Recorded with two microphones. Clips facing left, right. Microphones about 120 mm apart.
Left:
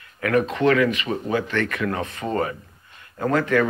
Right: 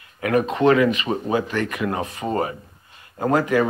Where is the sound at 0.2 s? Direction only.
20° right (ahead or behind).